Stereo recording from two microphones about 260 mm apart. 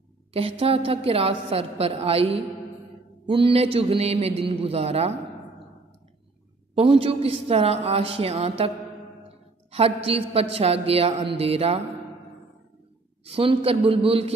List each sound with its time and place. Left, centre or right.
0.3 s a woman's voice: right
3.3 s a woman's voice: centre
6.7 s a woman's voice: right
13.2 s a woman's voice: right